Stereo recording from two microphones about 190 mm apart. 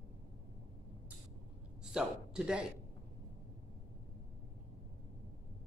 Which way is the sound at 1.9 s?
5° right (ahead or behind).